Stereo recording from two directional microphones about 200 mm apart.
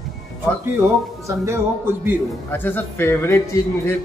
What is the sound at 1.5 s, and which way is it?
Speech, 10° right (ahead or behind).